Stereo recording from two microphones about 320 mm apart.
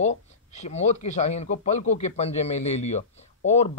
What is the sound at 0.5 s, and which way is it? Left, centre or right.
A man's voice, left.